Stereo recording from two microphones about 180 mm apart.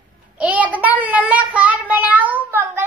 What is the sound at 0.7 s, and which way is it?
Child singing, 10° right (ahead or behind).